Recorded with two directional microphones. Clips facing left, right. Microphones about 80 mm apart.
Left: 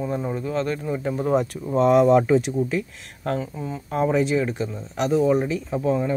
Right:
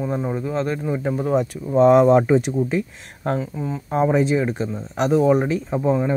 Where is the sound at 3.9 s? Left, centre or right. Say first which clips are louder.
Right 2 dB; right.